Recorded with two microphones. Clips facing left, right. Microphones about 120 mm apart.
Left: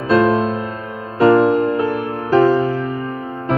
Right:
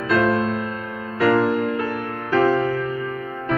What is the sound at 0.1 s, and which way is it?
Music, 30° left (ahead or behind).